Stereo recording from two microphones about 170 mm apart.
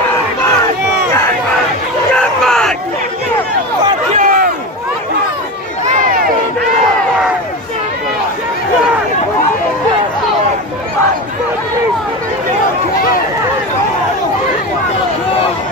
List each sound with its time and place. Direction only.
2.1 s crowd: 5° left (ahead or behind)
4.1 s a sound: 50° right (ahead or behind)
5.9 s crowd: 55° right (ahead or behind)